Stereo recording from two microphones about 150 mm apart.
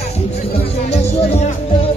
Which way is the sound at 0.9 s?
45° left (ahead or behind).